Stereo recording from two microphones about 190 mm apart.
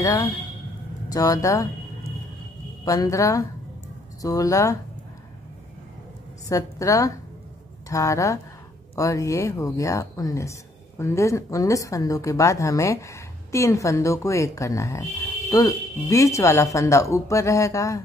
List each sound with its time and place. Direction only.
0.0 s speech: 15° left (ahead or behind)
2.8 s speech: 20° left (ahead or behind)
6.5 s speech: 15° left (ahead or behind)